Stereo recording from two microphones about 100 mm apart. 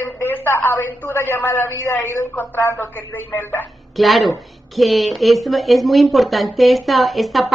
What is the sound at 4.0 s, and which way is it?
A woman's voice, centre (ahead or behind).